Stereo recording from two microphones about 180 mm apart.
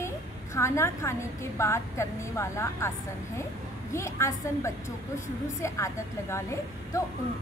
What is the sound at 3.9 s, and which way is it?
Speech, 15° left (ahead or behind).